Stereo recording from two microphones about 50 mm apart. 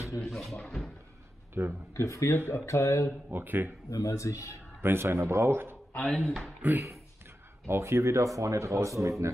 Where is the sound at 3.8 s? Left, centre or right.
Left.